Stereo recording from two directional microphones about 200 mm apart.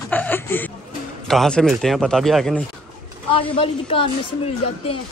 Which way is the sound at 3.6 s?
30° left (ahead or behind).